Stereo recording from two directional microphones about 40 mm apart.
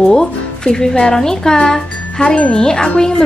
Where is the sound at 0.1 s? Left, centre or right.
Centre.